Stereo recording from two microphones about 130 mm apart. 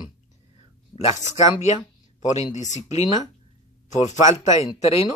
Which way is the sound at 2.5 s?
65° left (ahead or behind).